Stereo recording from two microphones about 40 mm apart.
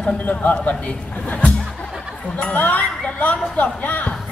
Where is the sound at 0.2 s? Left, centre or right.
Left.